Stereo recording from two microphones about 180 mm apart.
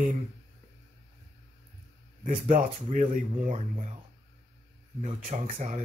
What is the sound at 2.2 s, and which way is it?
Speech, 45° right (ahead or behind).